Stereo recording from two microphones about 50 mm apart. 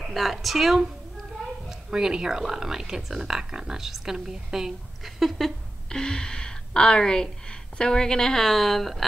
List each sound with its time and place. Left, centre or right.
0.0 s a woman's voice: centre
1.7 s speech: centre
5.9 s speech: centre